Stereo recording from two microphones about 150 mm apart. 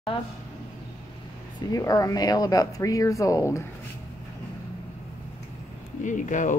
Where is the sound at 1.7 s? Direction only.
25° left (ahead or behind).